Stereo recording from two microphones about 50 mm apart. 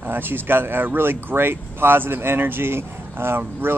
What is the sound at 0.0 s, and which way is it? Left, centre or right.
Speech, right.